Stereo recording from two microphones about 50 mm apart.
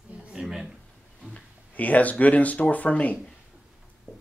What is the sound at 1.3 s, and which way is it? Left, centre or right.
Speech, left.